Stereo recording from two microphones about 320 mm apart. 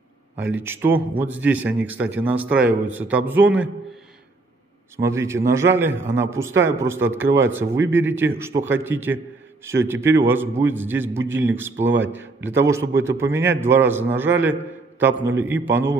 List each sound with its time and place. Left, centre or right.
0.6 s a man's voice: centre
4.9 s a man's voice: centre
7.7 s a man's voice: right
8.0 s a man's voice: centre
11.8 s a man's voice: right
12.1 s a man's voice: centre